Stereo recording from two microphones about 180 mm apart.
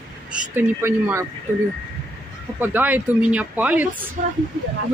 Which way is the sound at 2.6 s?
10° right (ahead or behind).